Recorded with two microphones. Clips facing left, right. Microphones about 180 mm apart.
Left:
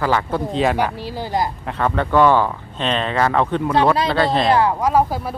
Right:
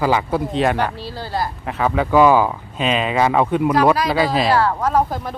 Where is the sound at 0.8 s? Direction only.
15° left (ahead or behind).